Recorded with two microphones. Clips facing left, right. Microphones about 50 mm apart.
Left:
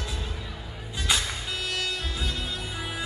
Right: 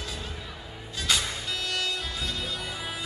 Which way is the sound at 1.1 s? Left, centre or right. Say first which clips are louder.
Even; centre.